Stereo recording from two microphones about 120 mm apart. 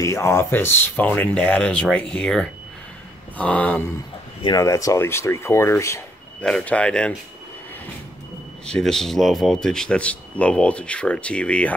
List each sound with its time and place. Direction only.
0.0 s speech: 25° left (ahead or behind)
4.6 s speech: 25° left (ahead or behind)
6.4 s speech: 10° left (ahead or behind)
8.6 s speech: 5° left (ahead or behind)